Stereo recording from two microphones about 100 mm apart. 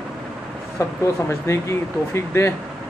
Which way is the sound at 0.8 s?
30° left (ahead or behind).